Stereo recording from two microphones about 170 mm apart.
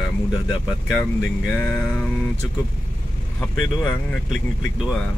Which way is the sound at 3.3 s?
20° left (ahead or behind).